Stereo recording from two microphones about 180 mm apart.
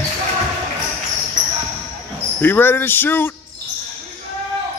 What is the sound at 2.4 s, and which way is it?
Speech, 10° left (ahead or behind).